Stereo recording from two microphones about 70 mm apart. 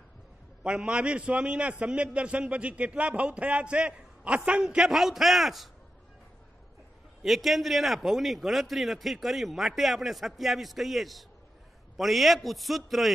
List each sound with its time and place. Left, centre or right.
0.7 s a man's voice: centre
7.2 s a man's voice: centre